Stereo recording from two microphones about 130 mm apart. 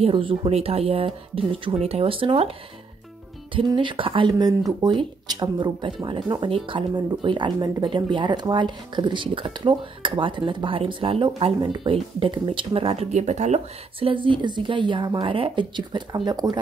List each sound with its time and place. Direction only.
0.0 s speech: 40° right (ahead or behind)
3.5 s speech: 40° right (ahead or behind)
4.3 s speech: 30° right (ahead or behind); by 13.6 s 60° right (ahead or behind)
13.9 s speech: 45° right (ahead or behind)